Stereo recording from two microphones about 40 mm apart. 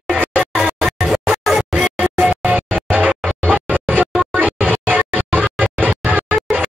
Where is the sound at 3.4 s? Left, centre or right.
Right.